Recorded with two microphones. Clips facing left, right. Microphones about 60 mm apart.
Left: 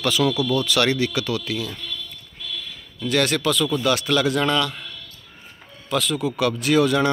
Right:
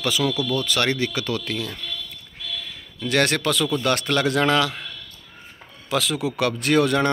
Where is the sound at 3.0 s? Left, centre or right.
Right.